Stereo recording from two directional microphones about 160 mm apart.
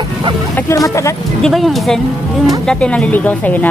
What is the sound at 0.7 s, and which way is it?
Music, 20° left (ahead or behind).